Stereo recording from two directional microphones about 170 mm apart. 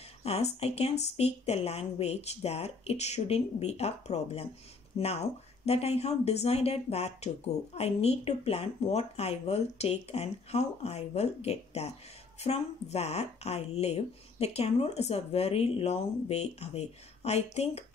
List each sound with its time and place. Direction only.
0.2 s speech: 40° left (ahead or behind)